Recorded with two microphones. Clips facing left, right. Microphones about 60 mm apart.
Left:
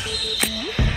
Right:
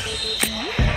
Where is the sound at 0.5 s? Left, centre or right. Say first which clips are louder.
Right 1 dB; right.